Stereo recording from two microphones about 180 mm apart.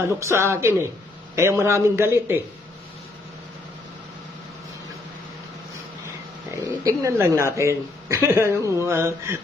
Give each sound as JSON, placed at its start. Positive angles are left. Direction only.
{"t": 0.1, "sound": "speech", "side_deg": -15}
{"t": 6.5, "sound": "speech", "side_deg": -20}